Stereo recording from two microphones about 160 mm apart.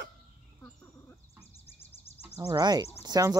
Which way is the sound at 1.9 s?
40° left (ahead or behind).